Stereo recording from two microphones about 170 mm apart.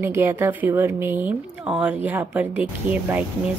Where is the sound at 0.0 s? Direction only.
15° right (ahead or behind).